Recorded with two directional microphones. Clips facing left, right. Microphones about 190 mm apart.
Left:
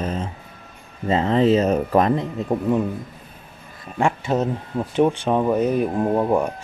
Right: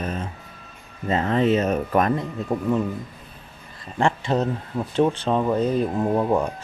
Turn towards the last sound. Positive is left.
turn(degrees=10)  # may be behind; listen again after turning